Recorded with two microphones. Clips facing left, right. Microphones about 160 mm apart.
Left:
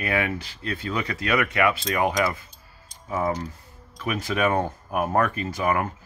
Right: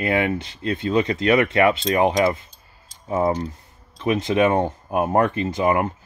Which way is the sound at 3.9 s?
25° right (ahead or behind).